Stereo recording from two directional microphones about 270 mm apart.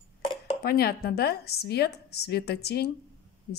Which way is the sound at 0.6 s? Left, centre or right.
Left.